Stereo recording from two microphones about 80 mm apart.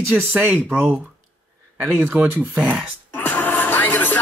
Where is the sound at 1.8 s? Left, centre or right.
Right.